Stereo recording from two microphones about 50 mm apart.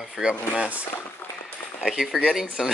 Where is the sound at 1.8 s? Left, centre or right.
Centre.